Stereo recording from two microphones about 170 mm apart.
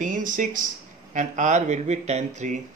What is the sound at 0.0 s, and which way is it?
Speech, 50° right (ahead or behind).